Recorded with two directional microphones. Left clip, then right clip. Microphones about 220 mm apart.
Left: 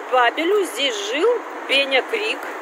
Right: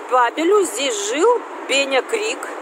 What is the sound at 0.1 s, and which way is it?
A man's voice, 25° right (ahead or behind).